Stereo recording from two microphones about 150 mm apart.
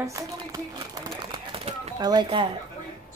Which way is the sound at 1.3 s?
35° right (ahead or behind).